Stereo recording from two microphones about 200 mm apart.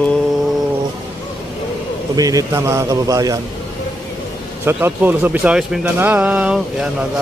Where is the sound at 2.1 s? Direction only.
15° right (ahead or behind).